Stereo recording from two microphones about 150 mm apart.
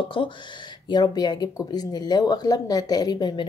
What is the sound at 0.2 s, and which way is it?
Speech, 35° left (ahead or behind).